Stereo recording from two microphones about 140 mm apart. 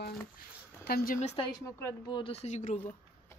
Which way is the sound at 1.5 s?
25° left (ahead or behind).